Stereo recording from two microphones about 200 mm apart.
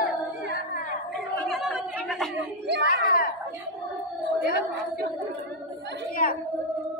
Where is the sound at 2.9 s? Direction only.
50° left (ahead or behind).